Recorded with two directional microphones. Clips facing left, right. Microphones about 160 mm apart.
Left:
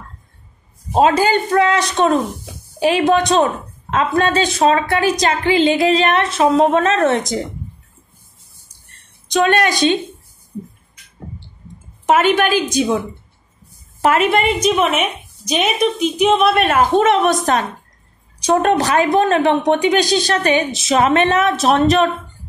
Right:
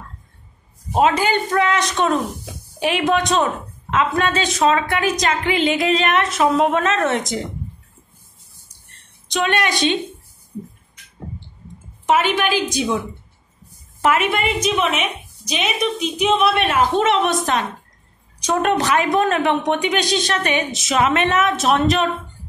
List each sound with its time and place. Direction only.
0.9 s a woman's voice: 35° left (ahead or behind)
9.3 s a woman's voice: 40° left (ahead or behind)
12.1 s a woman's voice: 50° left (ahead or behind)
14.0 s a woman's voice: 40° left (ahead or behind)